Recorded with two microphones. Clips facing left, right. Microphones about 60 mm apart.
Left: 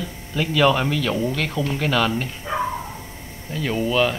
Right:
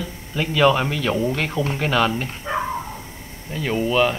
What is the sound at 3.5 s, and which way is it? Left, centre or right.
Speech, centre.